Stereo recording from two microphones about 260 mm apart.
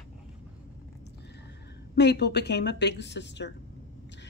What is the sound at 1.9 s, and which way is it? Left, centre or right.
Speech, left.